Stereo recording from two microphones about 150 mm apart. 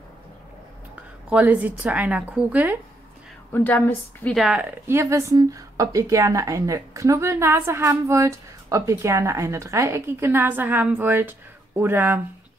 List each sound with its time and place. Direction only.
1.3 s speech: 10° right (ahead or behind)
3.5 s a woman's voice: 15° left (ahead or behind)
4.4 s speech: 10° right (ahead or behind)